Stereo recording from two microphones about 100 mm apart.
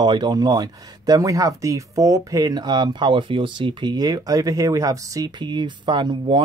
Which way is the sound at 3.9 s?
40° right (ahead or behind).